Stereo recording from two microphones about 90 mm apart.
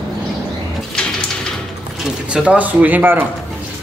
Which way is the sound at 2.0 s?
10° right (ahead or behind).